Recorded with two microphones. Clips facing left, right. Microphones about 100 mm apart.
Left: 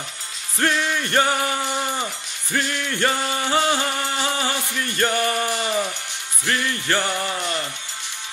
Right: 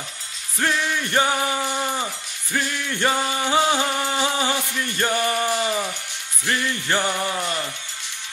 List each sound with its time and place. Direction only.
0.6 s music: 10° right (ahead or behind)